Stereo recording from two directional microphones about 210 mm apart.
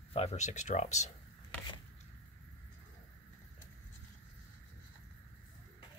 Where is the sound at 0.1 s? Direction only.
30° left (ahead or behind).